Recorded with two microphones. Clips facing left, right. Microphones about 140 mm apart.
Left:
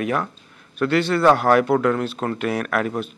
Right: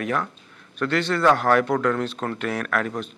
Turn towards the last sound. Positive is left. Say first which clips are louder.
# left 3 dB
turn(degrees=10)  # may be behind; listen again after turning